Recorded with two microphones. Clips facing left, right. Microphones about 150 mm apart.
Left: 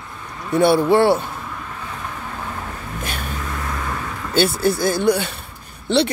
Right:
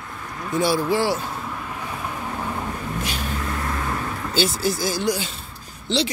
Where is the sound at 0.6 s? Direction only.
60° left (ahead or behind).